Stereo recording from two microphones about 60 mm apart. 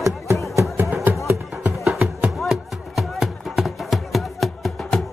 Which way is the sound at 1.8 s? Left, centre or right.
Centre.